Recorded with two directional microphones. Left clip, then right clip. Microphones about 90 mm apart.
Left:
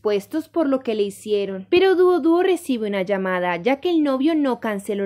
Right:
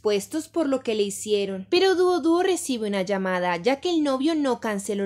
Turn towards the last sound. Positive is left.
turn(degrees=25)  # may be behind; listen again after turning